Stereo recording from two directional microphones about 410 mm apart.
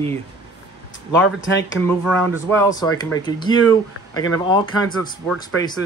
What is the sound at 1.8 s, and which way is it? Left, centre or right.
Speech, centre.